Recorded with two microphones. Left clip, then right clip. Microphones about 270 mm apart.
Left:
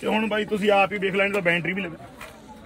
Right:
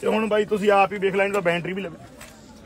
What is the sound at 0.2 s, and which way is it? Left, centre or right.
A man's voice, right.